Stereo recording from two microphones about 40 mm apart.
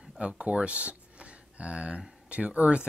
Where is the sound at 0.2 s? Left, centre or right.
Right.